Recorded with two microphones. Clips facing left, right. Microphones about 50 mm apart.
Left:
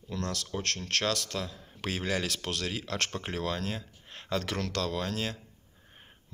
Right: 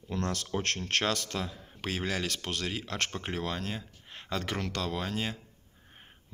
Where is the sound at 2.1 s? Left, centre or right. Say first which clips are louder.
Left 1 dB; centre.